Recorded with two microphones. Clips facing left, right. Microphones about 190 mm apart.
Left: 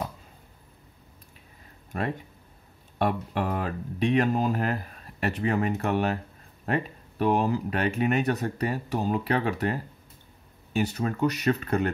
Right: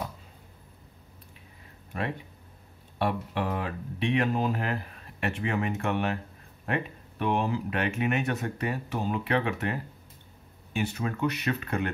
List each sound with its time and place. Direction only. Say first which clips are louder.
1.9 s speech: left 3 dB; 45° left (ahead or behind)